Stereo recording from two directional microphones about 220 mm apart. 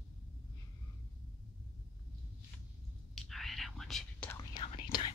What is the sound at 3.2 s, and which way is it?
Whispering, centre (ahead or behind).